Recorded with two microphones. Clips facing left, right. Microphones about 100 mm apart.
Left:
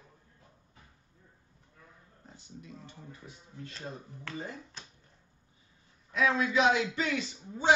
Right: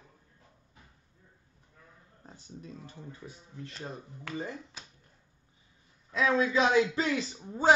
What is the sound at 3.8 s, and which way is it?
Speech, 20° right (ahead or behind).